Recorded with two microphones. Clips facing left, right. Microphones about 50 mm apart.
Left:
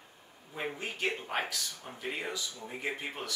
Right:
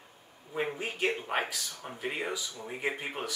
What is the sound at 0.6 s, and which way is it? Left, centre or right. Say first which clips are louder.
Speech: right 4 dB; centre.